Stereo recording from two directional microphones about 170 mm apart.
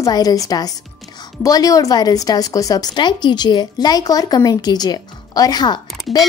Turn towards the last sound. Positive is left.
turn(degrees=25)  # may be behind; listen again after turning